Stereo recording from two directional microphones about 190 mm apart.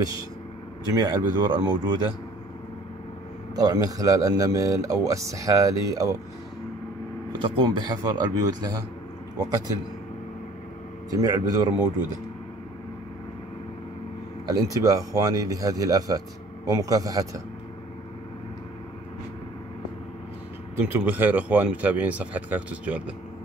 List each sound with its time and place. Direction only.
0.8 s speech: 20° right (ahead or behind)
3.5 s a man's voice: 20° right (ahead or behind)
7.4 s speech: 25° right (ahead or behind)
11.1 s speech: 20° right (ahead or behind)
14.5 s a man's voice: 20° right (ahead or behind)
20.7 s a man's voice: 10° right (ahead or behind)